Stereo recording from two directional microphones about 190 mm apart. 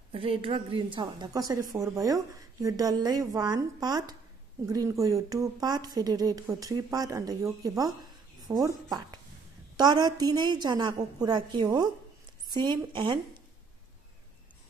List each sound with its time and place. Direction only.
0.1 s a woman's voice: 30° right (ahead or behind)
9.8 s a woman's voice: 20° right (ahead or behind)